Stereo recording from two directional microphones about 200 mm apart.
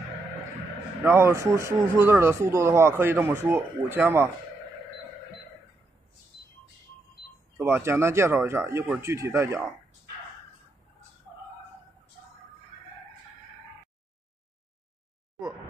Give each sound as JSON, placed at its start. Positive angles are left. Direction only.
{"t": 1.0, "sound": "speech", "side_deg": -15}
{"t": 7.5, "sound": "speech", "side_deg": -10}